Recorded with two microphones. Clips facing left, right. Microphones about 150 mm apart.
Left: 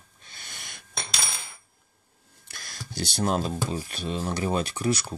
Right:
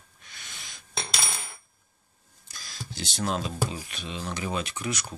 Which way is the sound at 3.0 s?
35° left (ahead or behind).